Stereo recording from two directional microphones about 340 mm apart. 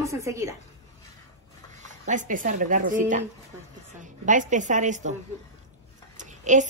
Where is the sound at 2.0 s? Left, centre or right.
Right.